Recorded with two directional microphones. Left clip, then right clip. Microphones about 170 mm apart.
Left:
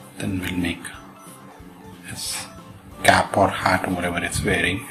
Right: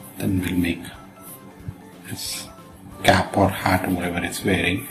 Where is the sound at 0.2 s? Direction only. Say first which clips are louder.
Right 2 dB; 35° left (ahead or behind).